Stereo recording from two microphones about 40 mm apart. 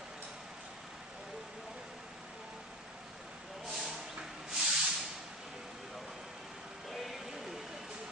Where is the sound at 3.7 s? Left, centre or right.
Centre.